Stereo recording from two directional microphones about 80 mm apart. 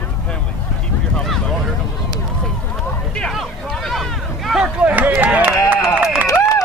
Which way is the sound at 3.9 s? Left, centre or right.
Centre.